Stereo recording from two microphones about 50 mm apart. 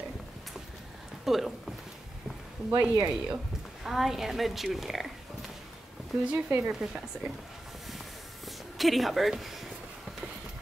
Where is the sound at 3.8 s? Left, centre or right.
Centre.